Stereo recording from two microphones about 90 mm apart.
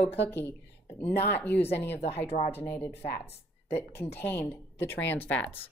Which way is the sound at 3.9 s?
20° left (ahead or behind).